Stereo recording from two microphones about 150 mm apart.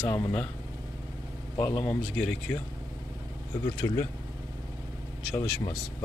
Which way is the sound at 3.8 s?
25° left (ahead or behind).